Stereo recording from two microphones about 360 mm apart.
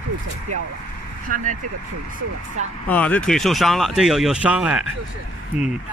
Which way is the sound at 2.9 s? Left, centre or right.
Centre.